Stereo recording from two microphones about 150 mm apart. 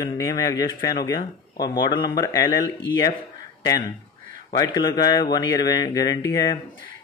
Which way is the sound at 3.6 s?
25° left (ahead or behind).